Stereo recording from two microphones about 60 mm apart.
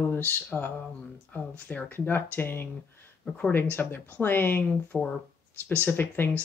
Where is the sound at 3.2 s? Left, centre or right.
Centre.